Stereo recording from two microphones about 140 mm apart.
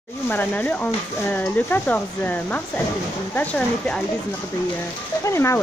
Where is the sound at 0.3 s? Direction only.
15° left (ahead or behind).